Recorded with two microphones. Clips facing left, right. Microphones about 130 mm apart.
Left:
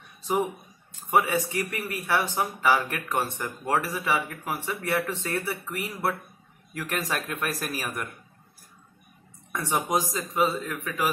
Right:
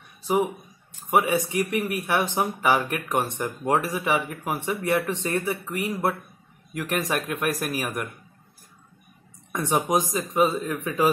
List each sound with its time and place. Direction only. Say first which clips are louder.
1.1 s speech: right 2 dB; 15° right (ahead or behind)
9.5 s a man's voice: right 3 dB; 20° right (ahead or behind)